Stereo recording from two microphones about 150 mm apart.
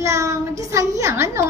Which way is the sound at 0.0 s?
20° right (ahead or behind).